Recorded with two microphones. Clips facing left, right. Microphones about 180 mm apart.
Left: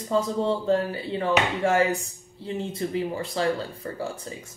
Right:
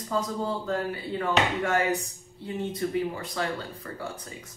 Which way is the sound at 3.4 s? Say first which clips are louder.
Left 6 dB; 30° left (ahead or behind).